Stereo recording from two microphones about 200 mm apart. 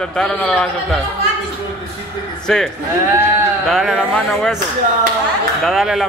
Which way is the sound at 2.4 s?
5° left (ahead or behind).